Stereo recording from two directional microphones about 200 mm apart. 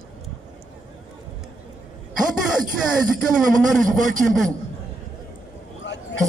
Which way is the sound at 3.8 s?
40° right (ahead or behind).